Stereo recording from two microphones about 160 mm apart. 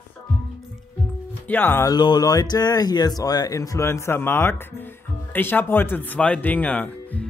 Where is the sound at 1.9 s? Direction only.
25° left (ahead or behind).